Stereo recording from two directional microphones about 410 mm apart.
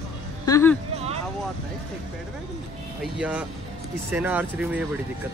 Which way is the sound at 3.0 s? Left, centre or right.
Centre.